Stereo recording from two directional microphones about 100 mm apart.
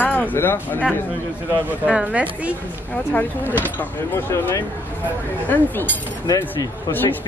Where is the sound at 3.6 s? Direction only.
20° left (ahead or behind).